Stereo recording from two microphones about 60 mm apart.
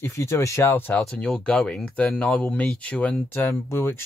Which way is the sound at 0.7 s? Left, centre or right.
Left.